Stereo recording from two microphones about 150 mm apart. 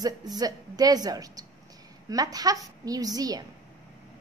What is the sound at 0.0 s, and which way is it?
A woman's voice, 25° right (ahead or behind).